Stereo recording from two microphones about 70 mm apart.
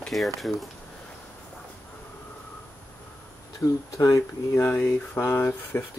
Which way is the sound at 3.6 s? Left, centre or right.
Left.